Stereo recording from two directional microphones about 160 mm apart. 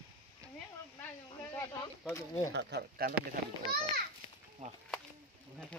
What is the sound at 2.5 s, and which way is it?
Speech, 90° right.